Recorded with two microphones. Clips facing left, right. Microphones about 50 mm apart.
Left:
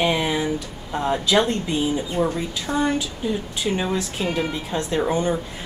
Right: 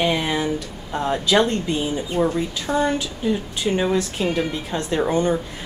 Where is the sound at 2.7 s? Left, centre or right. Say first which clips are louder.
Right 1 dB; centre.